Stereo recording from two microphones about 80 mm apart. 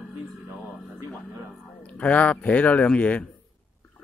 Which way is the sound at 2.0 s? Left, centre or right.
Centre.